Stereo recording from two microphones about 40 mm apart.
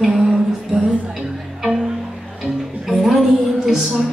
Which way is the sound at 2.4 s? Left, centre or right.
Centre.